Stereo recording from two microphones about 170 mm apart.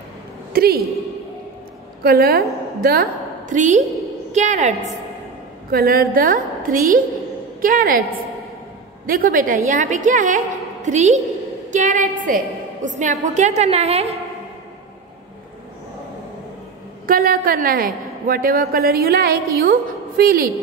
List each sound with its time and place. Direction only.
0.5 s a woman's voice: 65° right (ahead or behind)
2.0 s a woman's voice: 65° right (ahead or behind); by 4.9 s 45° right (ahead or behind)
5.7 s a woman's voice: 65° right (ahead or behind)
9.0 s a woman's voice: 60° right (ahead or behind); by 14.1 s 35° right (ahead or behind)
17.0 s a woman's voice: 60° right (ahead or behind)